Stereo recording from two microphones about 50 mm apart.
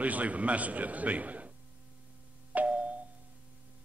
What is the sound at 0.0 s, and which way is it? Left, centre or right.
A man's voice, right.